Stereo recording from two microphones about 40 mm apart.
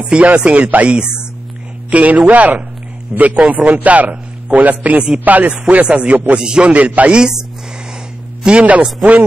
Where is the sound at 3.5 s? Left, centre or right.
Right.